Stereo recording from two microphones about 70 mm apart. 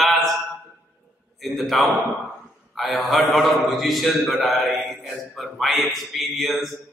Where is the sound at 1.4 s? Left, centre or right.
Centre.